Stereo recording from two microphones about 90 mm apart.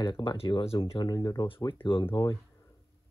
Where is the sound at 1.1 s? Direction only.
50° left (ahead or behind).